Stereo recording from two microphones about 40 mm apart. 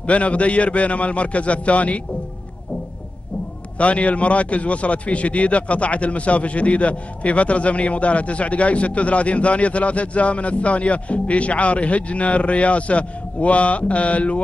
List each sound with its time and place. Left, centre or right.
0.0 s a man's voice: left
3.7 s a man's voice: left